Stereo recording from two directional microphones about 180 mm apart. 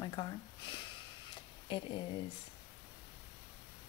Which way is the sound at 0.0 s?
25° left (ahead or behind).